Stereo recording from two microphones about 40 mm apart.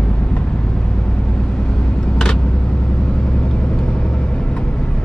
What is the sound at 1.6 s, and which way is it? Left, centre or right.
Vehicle, left.